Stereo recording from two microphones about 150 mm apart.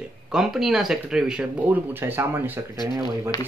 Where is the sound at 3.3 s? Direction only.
20° left (ahead or behind).